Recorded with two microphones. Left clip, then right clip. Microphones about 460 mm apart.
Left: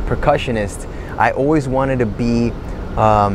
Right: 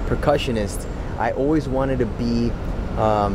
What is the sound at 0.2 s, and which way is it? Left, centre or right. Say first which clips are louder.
Speech: left 4 dB; left.